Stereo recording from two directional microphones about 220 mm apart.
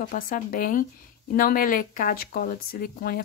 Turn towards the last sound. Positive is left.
turn(degrees=40)  # may be behind; listen again after turning